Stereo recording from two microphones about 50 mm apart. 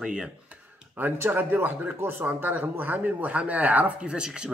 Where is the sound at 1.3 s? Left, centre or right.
Right.